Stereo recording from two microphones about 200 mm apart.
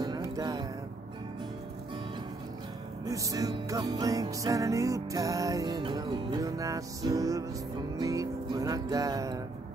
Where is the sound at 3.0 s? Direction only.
15° right (ahead or behind).